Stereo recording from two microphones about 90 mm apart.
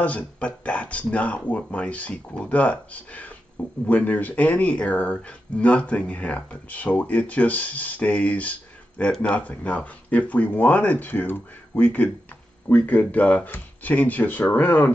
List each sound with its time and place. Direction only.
0.0 s speech: 15° left (ahead or behind)